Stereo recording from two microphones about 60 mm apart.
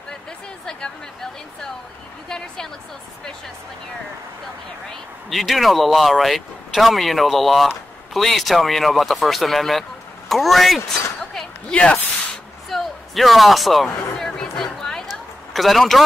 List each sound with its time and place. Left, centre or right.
0.7 s a woman's voice: centre
5.3 s speech: centre
11.7 s speech: left
12.6 s a sound: centre